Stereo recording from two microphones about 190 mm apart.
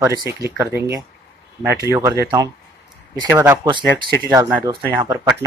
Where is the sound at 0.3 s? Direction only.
15° right (ahead or behind).